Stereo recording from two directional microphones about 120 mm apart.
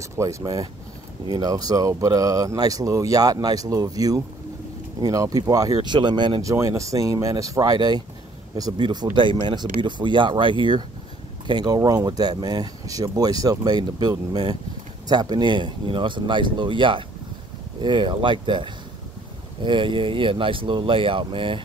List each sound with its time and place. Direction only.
0.0 s speech: 25° right (ahead or behind)
6.4 s speech: 25° right (ahead or behind); by 21.6 s 45° right (ahead or behind)